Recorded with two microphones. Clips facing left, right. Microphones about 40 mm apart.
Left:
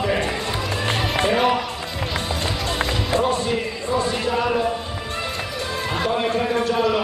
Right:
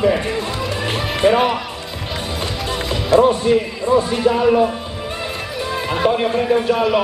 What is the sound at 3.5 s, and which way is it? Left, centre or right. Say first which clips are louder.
Speech: right 8 dB; centre.